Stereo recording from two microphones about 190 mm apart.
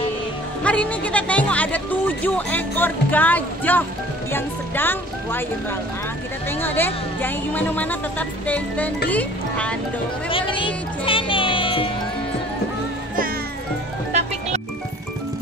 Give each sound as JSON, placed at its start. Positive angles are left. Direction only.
{"t": 0.7, "sound": "speech", "side_deg": 5}
{"t": 10.3, "sound": "music", "side_deg": 25}